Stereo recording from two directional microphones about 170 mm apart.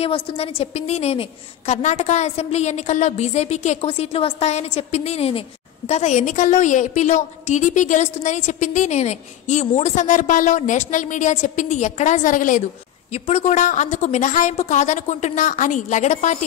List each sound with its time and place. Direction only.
0.0 s a woman's voice: 35° left (ahead or behind); by 12.6 s 50° left (ahead or behind)
13.1 s a woman's voice: 40° left (ahead or behind)